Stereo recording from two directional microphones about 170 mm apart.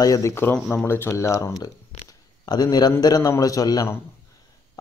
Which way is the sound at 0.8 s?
15° left (ahead or behind).